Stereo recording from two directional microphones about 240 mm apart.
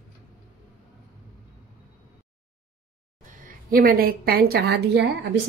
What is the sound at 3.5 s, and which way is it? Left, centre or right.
A woman's voice, right.